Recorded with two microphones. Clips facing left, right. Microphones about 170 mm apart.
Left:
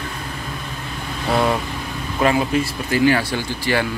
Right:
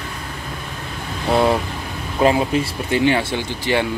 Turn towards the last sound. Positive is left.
turn(degrees=-20)  # may be behind; listen again after turning